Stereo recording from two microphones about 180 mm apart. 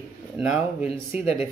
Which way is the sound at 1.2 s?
35° left (ahead or behind).